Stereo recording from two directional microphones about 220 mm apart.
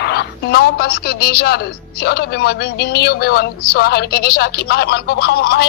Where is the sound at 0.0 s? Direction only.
50° left (ahead or behind).